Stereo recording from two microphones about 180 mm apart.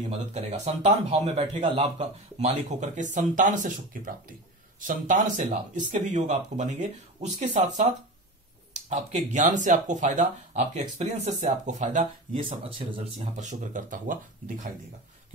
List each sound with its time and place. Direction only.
0.1 s speech: 40° right (ahead or behind)
12.4 s speech: 30° right (ahead or behind); by 14.1 s 50° right (ahead or behind)